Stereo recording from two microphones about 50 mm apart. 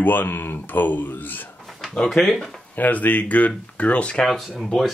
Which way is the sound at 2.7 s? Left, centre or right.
Left.